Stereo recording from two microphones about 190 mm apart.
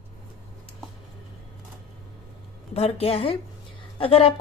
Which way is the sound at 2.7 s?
30° left (ahead or behind).